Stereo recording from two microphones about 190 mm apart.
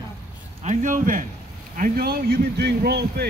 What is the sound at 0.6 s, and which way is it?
A man's voice, 40° right (ahead or behind).